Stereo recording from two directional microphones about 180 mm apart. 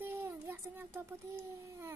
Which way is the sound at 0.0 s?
15° right (ahead or behind).